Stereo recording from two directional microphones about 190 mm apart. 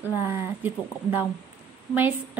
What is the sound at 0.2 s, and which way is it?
A woman's voice, 10° right (ahead or behind).